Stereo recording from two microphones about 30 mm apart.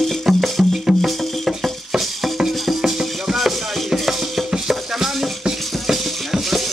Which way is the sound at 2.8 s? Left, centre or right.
Centre.